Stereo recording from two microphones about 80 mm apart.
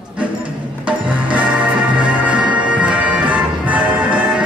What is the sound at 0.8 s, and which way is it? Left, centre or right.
Music, centre.